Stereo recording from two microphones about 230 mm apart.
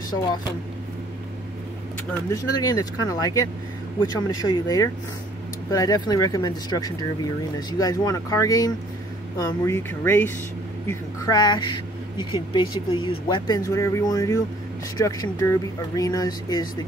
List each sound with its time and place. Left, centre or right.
2.2 s speech: centre